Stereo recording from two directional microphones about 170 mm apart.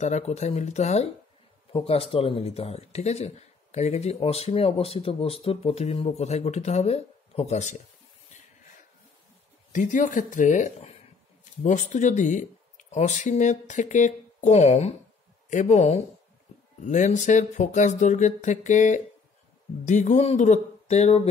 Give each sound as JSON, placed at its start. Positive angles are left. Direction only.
{"t": 0.0, "sound": "speech", "side_deg": 40}
{"t": 9.7, "sound": "speech", "side_deg": 50}